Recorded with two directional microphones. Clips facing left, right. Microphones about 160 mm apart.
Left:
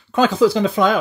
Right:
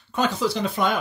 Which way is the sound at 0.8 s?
90° left.